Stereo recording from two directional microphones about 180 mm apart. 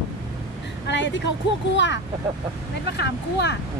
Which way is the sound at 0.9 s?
90° left.